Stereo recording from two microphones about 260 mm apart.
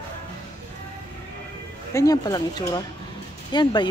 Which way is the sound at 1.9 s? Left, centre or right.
Centre.